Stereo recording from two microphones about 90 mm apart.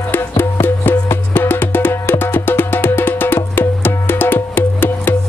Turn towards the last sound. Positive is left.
turn(degrees=25)  # may be behind; listen again after turning